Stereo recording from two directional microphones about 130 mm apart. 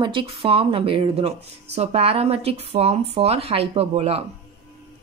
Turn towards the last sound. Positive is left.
turn(degrees=-50)  # may be behind; listen again after turning